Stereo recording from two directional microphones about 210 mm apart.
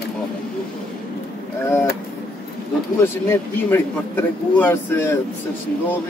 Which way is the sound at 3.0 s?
10° left (ahead or behind).